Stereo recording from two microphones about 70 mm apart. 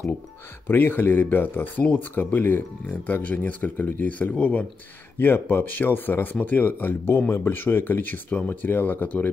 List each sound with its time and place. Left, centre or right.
0.7 s speech: left